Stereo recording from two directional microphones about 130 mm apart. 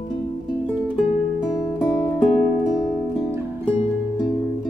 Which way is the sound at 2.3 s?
55° left (ahead or behind).